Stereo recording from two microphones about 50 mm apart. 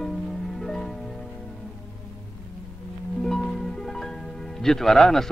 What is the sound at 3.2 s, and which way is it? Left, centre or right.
Speech, centre.